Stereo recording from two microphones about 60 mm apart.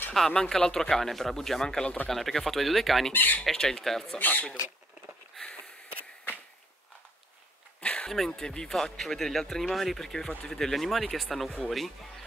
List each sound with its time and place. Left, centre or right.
0.1 s speech: centre
3.1 s speech: left
3.4 s speech: centre
4.2 s speech: left
5.4 s sniff: centre
7.8 s a sound: centre
8.1 s speech: centre